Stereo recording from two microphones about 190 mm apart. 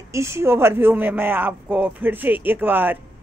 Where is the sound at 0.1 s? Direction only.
15° right (ahead or behind).